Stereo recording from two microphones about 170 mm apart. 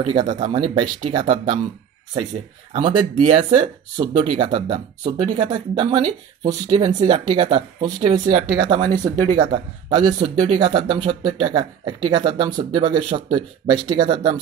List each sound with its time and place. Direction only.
0.0 s speech: 25° right (ahead or behind)
2.7 s speech: 25° right (ahead or behind)
8.3 s speech: 45° right (ahead or behind)
8.6 s speech: 25° right (ahead or behind)
9.3 s speech: 45° right (ahead or behind)
9.8 s speech: 25° right (ahead or behind)